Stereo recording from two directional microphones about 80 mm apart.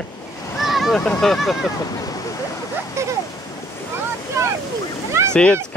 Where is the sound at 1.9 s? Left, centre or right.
Left.